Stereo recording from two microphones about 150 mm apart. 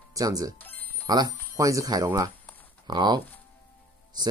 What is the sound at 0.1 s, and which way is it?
Speech, 25° right (ahead or behind).